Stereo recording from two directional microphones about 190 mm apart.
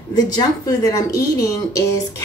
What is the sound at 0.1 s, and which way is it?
A woman's voice, 20° left (ahead or behind).